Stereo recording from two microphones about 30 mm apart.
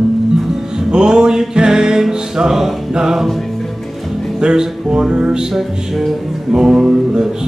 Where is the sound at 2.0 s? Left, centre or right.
Centre.